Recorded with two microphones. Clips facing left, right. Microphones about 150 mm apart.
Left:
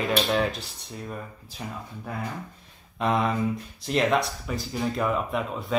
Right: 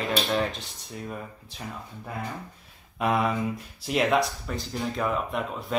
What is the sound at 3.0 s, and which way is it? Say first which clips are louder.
Speech: left 1 dB; 5° right (ahead or behind).